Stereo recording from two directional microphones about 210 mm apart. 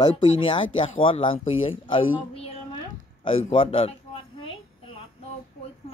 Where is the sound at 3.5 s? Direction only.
25° left (ahead or behind).